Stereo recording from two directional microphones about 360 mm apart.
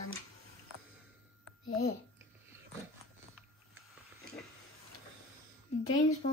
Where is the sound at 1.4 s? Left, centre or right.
Left.